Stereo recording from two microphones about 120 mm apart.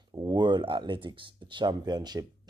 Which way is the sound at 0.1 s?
35° right (ahead or behind).